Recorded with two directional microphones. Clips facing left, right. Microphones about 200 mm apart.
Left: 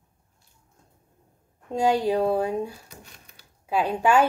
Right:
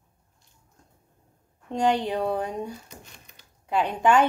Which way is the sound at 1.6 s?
10° left (ahead or behind).